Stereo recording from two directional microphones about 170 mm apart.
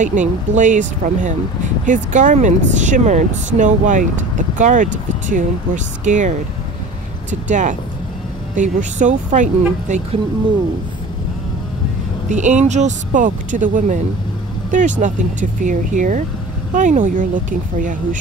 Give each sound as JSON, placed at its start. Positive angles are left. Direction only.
{"t": 0.0, "sound": "speech", "side_deg": -45}
{"t": 12.3, "sound": "speech", "side_deg": -45}